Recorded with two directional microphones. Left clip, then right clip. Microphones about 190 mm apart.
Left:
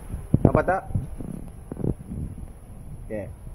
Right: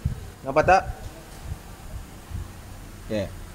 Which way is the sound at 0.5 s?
10° right (ahead or behind).